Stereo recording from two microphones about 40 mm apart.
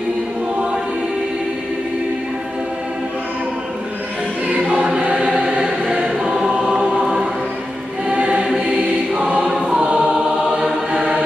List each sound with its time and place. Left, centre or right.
5.0 s choir: right
8.1 s choir: right